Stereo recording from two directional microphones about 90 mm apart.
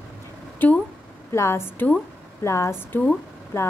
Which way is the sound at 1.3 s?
30° left (ahead or behind).